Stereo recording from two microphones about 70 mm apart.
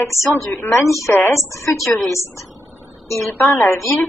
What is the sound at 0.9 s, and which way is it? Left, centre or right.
A woman's voice, left.